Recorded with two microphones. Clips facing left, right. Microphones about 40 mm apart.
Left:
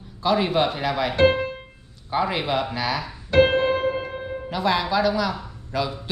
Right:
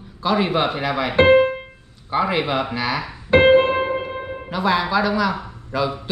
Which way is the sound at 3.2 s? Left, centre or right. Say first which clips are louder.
Right 5 dB; right.